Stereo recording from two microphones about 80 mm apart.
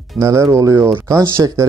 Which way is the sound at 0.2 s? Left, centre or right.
Right.